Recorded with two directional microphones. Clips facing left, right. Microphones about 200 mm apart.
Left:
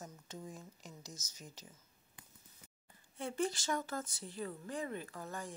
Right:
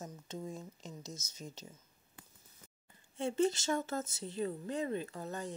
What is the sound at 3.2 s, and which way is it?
Speech, 25° right (ahead or behind).